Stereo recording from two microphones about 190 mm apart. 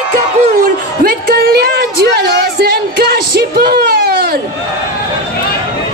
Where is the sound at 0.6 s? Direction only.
50° right (ahead or behind).